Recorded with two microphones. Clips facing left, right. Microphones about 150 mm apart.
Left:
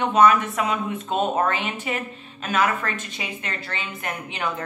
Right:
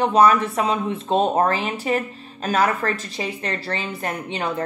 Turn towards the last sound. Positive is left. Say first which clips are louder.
# right 4 dB
turn(degrees=-35)  # may be behind; listen again after turning